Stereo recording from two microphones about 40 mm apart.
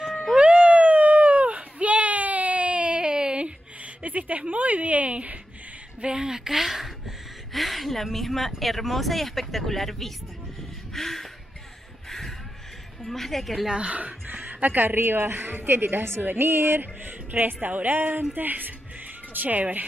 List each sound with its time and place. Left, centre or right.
0.4 s a sound: right
5.9 s a woman's voice: right; by 10.1 s centre
10.9 s a sound: centre
12.1 s shuffle: centre
13.0 s speech: centre
13.8 s a woman's voice: right
16.2 s speech: right
17.3 s a woman's voice: right